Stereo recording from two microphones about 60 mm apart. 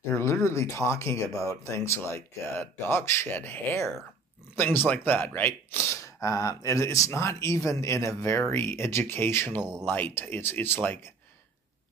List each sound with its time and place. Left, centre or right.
0.1 s speech: left
6.0 s speech: left
9.6 s speech: centre
9.8 s speech: left